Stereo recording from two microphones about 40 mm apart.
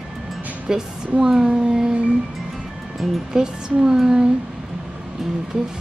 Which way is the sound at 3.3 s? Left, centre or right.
Centre.